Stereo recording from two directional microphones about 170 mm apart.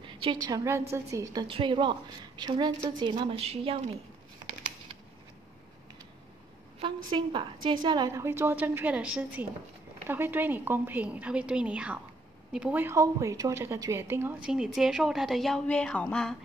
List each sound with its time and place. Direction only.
0.0 s a woman's voice: 30° right (ahead or behind)
7.1 s a woman's voice: 30° right (ahead or behind); by 16.3 s 5° left (ahead or behind)